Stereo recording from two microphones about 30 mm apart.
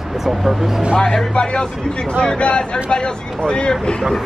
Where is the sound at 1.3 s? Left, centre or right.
Left.